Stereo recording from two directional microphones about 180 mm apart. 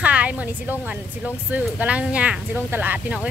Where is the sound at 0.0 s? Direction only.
5° right (ahead or behind).